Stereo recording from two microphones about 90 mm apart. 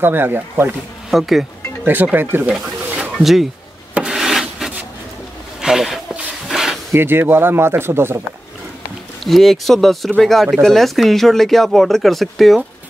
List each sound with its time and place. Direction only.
0.0 s speech: 25° right (ahead or behind)
1.1 s speech: centre (ahead or behind)
2.1 s speech: 20° right (ahead or behind)
3.0 s a sound: centre (ahead or behind)
3.9 s rub: 5° right (ahead or behind)
5.6 s a sound: 5° right (ahead or behind)
6.9 s speech: 25° right (ahead or behind)
9.2 s speech: centre (ahead or behind)